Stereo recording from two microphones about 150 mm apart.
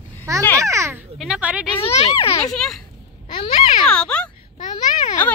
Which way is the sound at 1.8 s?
40° left (ahead or behind).